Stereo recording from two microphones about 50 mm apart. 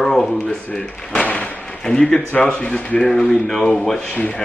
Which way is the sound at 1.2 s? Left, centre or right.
Left.